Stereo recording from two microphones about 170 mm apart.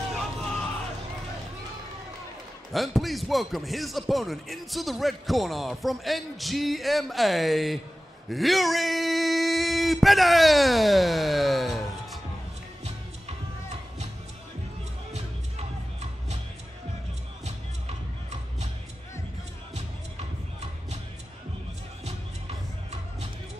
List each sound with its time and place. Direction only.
2.7 s speech: centre (ahead or behind)
8.3 s a sound: centre (ahead or behind)
15.1 s music: 40° right (ahead or behind)
17.5 s music: 40° right (ahead or behind)
22.0 s music: 40° right (ahead or behind)